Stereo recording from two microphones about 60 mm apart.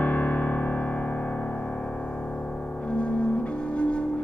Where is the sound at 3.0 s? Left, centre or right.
Centre.